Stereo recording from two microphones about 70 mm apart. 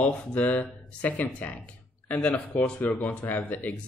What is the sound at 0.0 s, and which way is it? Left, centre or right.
Speech, centre.